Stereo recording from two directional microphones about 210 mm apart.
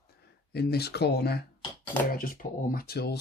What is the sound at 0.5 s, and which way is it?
Speech, 50° left (ahead or behind).